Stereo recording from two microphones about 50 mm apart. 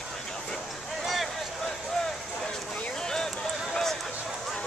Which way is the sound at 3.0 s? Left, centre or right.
Centre.